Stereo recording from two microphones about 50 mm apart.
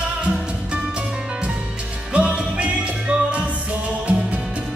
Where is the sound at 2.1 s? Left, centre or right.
Right.